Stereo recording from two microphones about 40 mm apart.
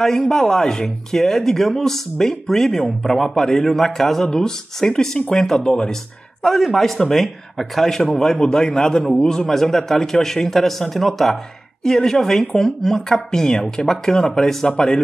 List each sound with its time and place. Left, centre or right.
0.0 s speech: centre